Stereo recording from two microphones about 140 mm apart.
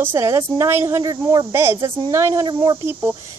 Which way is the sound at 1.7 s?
35° right (ahead or behind).